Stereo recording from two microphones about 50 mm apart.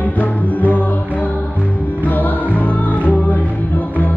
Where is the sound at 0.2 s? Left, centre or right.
Left.